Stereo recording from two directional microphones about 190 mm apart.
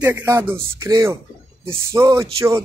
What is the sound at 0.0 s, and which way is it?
Speech, 10° right (ahead or behind).